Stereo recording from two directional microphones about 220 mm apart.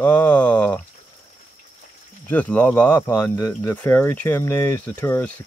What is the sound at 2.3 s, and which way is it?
Speech, 5° left (ahead or behind).